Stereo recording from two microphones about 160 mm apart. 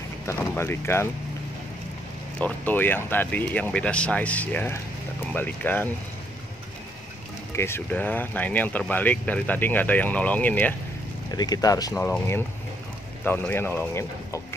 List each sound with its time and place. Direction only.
0.3 s speech: 15° left (ahead or behind)
2.4 s speech: 10° left (ahead or behind)
7.5 s speech: 15° left (ahead or behind)
11.3 s speech: 25° left (ahead or behind)
12.0 s speech: 15° left (ahead or behind)